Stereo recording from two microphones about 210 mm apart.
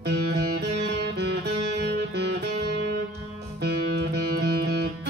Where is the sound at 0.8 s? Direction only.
50° right (ahead or behind).